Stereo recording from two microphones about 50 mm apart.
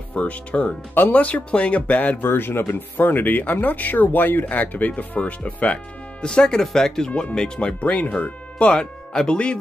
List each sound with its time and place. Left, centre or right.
0.1 s speech: left
0.9 s speech: left
1.2 s speech: left
2.2 s speech: left; by 7.7 s centre
7.8 s speech: left
8.7 s speech: centre